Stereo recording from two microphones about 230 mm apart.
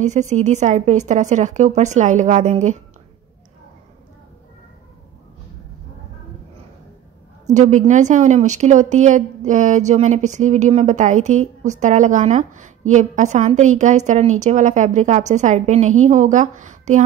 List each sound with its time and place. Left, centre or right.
0.0 s a woman's voice: right
7.4 s a woman's voice: right